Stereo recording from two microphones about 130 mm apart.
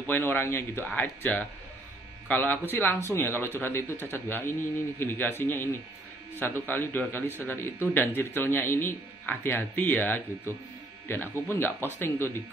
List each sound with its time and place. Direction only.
0.0 s a man's voice: 15° left (ahead or behind)